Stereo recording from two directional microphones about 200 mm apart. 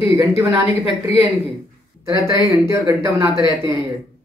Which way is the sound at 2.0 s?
15° right (ahead or behind).